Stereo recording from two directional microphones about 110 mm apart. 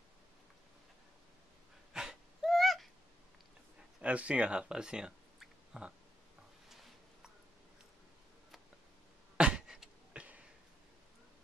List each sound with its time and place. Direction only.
2.0 s wheeze: centre (ahead or behind)
4.0 s speech: 10° right (ahead or behind)
9.4 s a sound: 10° right (ahead or behind)